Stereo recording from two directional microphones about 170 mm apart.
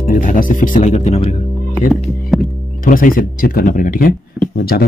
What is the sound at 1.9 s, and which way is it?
Music, centre (ahead or behind).